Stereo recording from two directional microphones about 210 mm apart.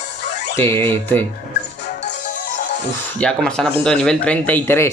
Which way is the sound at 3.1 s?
5° left (ahead or behind).